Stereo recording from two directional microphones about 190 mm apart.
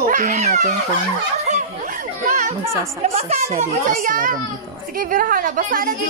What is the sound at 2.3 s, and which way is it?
Chatter, 40° right (ahead or behind).